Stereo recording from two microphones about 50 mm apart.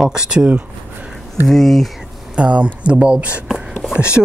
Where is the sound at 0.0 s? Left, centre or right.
Centre.